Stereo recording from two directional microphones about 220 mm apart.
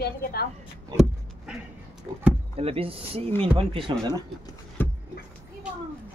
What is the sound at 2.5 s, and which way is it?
Speech, 25° right (ahead or behind).